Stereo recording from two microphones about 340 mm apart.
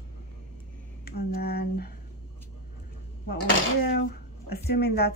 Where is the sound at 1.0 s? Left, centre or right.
Left.